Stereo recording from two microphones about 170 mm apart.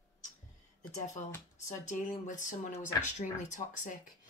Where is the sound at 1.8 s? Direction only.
45° left (ahead or behind).